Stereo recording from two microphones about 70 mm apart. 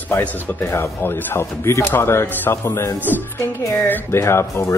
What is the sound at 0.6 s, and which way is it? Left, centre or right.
Speech, left.